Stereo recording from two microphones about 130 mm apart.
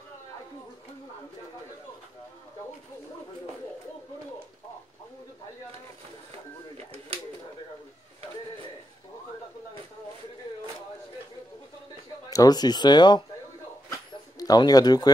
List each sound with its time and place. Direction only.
12.3 s speech: 30° left (ahead or behind)
14.4 s speech: 30° left (ahead or behind)